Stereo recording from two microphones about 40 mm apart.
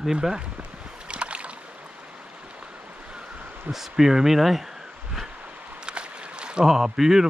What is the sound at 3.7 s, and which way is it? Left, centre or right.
Speech, centre.